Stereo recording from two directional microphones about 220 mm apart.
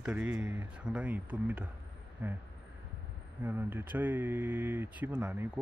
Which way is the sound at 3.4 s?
10° right (ahead or behind).